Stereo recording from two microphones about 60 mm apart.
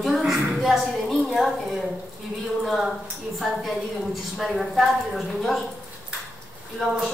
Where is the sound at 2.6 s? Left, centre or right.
Centre.